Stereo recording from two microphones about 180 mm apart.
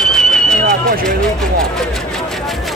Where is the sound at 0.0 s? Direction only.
5° left (ahead or behind).